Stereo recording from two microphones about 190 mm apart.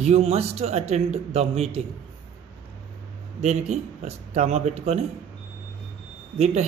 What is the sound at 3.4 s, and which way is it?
Speech, 35° right (ahead or behind).